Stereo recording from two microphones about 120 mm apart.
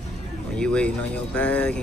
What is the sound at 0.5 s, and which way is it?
Speech, 10° left (ahead or behind).